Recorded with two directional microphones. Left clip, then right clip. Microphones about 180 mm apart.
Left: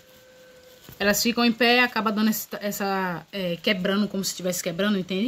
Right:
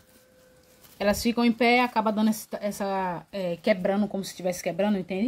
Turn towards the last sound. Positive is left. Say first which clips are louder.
# left 1 dB
turn(degrees=5)  # may be behind; listen again after turning